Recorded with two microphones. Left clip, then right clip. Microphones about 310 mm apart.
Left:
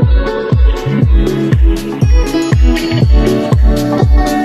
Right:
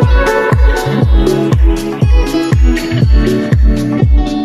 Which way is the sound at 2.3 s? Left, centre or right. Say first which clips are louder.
Left 1 dB; centre.